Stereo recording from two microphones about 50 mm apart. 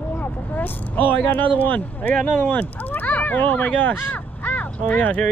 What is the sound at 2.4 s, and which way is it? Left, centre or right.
Speech, left.